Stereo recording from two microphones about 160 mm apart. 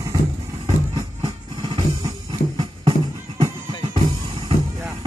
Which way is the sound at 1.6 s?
25° right (ahead or behind).